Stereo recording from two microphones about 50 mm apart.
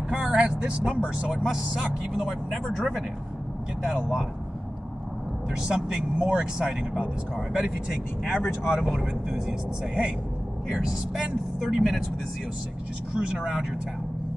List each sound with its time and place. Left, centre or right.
0.1 s speech: centre
1.8 s speech: centre
5.5 s speech: centre
8.4 s speech: centre
13.2 s speech: right
13.5 s speech: centre